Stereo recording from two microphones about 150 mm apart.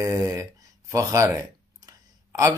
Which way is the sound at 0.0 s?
15° right (ahead or behind).